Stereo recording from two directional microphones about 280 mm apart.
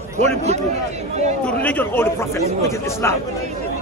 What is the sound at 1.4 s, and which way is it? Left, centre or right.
Speech, centre.